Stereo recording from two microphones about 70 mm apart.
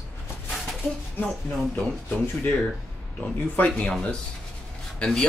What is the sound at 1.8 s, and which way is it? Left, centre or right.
Speech, left.